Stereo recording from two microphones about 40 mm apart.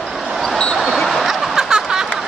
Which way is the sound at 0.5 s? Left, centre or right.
Centre.